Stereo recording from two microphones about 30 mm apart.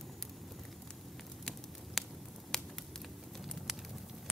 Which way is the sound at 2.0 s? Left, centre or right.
Centre.